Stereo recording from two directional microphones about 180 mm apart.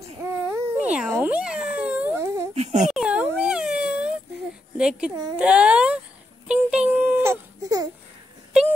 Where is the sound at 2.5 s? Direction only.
40° right (ahead or behind).